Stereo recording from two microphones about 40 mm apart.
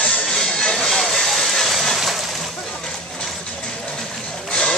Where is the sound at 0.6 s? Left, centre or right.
Centre.